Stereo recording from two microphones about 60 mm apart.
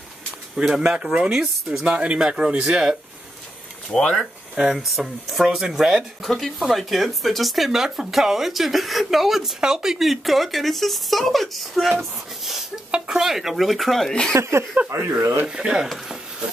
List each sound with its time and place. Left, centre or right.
0.6 s speech: centre
1.9 s speech: centre
3.9 s speech: centre
4.6 s speech: centre
6.2 s speech: centre
14.3 s speech: right
15.0 s speech: right
15.4 s speech: centre